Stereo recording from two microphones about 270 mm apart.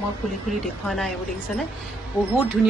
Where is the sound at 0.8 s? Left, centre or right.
Centre.